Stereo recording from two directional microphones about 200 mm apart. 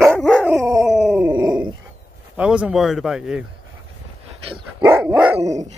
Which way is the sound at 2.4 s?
5° right (ahead or behind).